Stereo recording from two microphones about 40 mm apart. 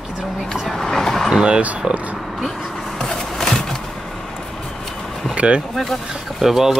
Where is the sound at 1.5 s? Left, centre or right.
Right.